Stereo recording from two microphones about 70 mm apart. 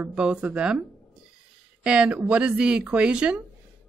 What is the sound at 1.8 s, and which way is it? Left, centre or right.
A woman's voice, centre.